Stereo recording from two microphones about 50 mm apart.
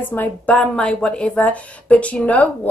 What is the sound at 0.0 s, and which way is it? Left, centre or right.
Speech, left.